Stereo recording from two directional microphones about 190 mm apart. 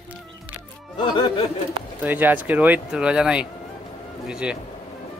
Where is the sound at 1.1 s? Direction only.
25° left (ahead or behind).